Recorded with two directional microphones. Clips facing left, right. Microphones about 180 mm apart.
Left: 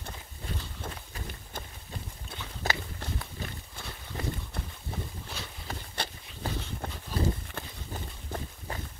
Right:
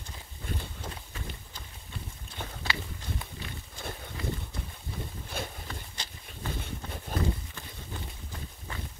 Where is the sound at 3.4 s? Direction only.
40° left (ahead or behind).